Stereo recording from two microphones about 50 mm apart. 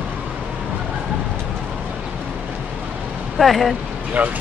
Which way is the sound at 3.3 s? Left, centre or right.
Centre.